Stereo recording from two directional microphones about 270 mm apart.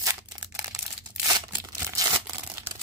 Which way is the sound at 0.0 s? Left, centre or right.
Centre.